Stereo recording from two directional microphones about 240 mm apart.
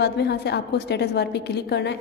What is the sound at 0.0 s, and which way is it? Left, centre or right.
A woman's voice, left.